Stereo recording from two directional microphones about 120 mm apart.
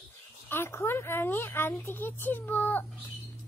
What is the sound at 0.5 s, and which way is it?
A woman's voice, 20° left (ahead or behind).